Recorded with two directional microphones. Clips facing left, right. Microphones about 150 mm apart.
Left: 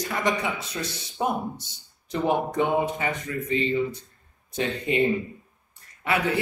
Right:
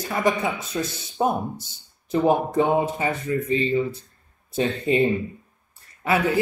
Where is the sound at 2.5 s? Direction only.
25° right (ahead or behind).